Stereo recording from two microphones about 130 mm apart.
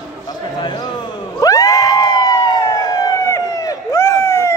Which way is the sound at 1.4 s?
25° left (ahead or behind).